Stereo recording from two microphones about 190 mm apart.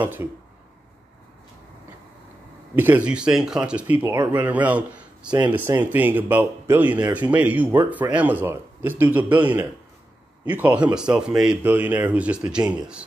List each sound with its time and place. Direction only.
0.0 s speech: 10° right (ahead or behind)
2.7 s speech: 10° right (ahead or behind)